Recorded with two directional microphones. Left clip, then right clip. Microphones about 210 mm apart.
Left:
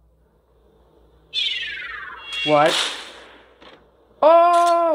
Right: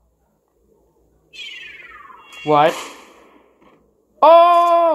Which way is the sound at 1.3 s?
45° left (ahead or behind).